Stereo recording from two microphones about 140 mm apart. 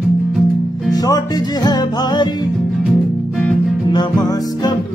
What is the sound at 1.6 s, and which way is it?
Music, 30° left (ahead or behind).